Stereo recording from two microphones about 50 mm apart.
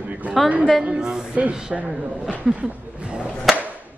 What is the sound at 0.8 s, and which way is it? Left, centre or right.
Speech, centre.